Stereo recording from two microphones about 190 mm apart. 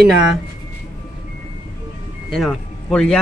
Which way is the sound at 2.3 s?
Centre (ahead or behind).